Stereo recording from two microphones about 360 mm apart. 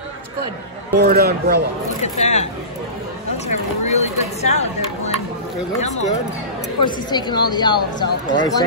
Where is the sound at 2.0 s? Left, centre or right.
Centre.